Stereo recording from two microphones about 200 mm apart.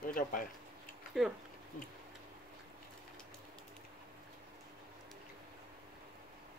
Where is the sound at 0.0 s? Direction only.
45° left (ahead or behind).